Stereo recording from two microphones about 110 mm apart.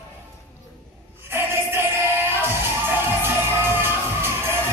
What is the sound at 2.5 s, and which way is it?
Music, 20° right (ahead or behind).